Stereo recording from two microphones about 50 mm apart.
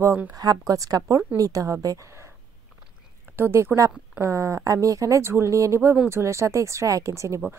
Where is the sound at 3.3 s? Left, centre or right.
Right.